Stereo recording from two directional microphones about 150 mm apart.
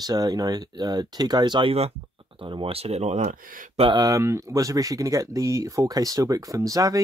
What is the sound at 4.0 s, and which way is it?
Speech, 20° right (ahead or behind).